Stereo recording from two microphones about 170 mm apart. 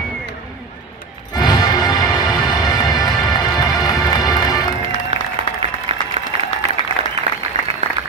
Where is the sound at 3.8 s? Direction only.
20° left (ahead or behind).